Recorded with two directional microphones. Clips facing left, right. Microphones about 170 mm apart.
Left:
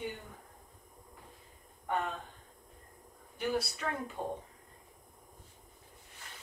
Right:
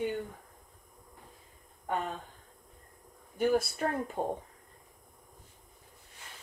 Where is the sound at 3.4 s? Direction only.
50° right (ahead or behind).